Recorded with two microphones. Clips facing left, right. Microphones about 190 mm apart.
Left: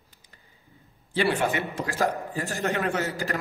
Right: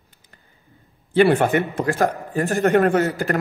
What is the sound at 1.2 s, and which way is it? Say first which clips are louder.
A man's voice: right 9 dB; 55° right (ahead or behind).